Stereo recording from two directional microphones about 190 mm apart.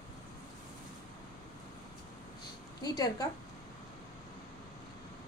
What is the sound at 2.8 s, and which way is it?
Speech, 20° left (ahead or behind).